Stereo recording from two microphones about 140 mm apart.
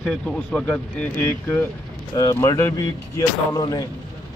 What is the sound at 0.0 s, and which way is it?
Speech, 5° left (ahead or behind).